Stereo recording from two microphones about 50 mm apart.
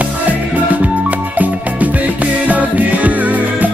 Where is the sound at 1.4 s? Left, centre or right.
Right.